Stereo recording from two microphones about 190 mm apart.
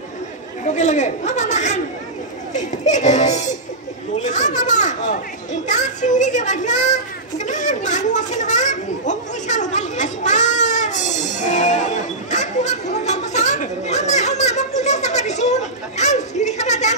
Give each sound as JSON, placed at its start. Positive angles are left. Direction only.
{"t": 0.7, "sound": "a man's voice", "side_deg": 40}
{"t": 4.2, "sound": "children playing", "side_deg": 40}